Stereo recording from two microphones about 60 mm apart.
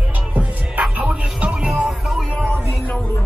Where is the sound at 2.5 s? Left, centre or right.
Left.